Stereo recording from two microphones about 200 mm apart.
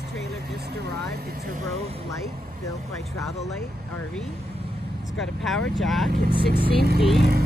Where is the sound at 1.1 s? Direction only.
45° right (ahead or behind).